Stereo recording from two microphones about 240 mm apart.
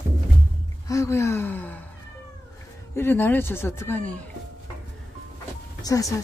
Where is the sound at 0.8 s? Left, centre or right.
Centre.